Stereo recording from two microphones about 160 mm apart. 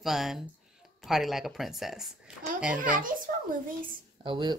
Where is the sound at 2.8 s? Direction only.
55° right (ahead or behind).